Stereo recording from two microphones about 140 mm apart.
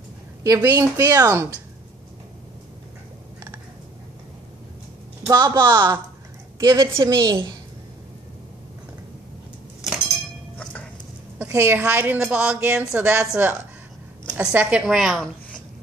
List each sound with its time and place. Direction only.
0.7 s speech: 25° right (ahead or behind)
5.2 s speech: 25° right (ahead or behind)
7.2 s a woman's voice: 35° right (ahead or behind)
11.3 s a woman's voice: 15° right (ahead or behind); by 15.2 s centre (ahead or behind)